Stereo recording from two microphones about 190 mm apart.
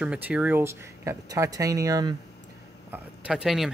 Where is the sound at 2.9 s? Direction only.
5° right (ahead or behind).